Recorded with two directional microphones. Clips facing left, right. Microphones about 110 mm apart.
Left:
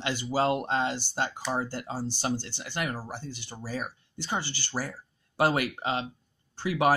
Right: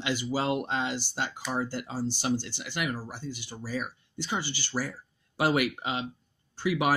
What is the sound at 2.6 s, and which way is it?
Speech, 40° left (ahead or behind).